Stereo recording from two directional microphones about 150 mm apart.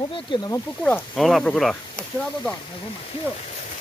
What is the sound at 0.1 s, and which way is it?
Speech, 30° left (ahead or behind).